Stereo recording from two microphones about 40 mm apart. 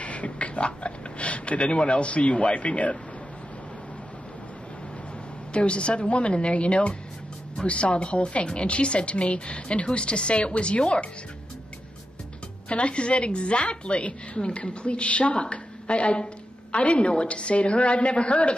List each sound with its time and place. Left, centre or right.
0.0 s speech: left
5.5 s a woman's voice: left
12.6 s a woman's voice: left